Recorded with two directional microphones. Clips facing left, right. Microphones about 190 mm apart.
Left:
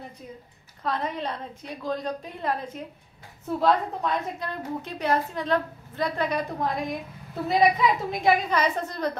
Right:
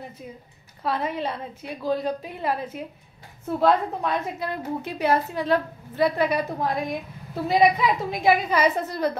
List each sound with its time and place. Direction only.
0.8 s a woman's voice: 5° right (ahead or behind)